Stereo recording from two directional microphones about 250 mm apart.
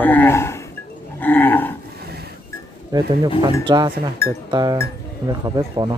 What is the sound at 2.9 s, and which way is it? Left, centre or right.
Speech, centre.